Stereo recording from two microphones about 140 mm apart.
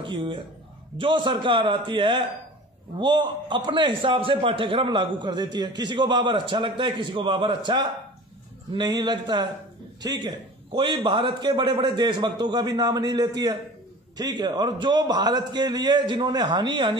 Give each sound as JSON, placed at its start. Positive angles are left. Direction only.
{"t": 0.0, "sound": "a man's voice", "side_deg": -35}